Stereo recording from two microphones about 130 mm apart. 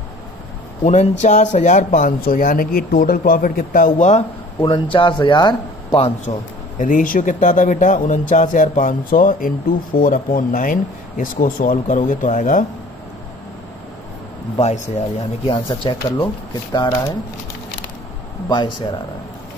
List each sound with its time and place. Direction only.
0.8 s speech: 60° left (ahead or behind); by 4.2 s 80° left
4.6 s speech: 40° left (ahead or behind)
6.3 s speech: 55° left (ahead or behind)
6.8 s a man's voice: 90° left
14.6 s speech: 60° left (ahead or behind)
15.4 s speech: 40° left (ahead or behind)
18.5 s speech: 35° left (ahead or behind)